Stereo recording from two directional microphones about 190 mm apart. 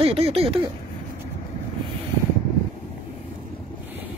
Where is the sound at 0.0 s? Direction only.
30° right (ahead or behind).